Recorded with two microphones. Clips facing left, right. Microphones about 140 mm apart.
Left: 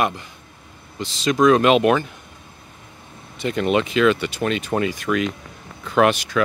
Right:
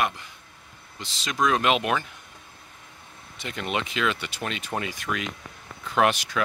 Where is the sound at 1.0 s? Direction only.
40° left (ahead or behind).